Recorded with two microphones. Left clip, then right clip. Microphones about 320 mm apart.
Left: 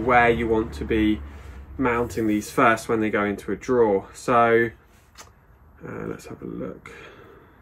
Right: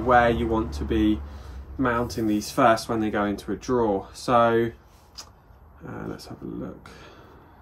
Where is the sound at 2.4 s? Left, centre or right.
Centre.